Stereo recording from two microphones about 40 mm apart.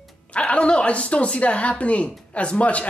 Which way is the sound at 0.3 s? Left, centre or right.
Left.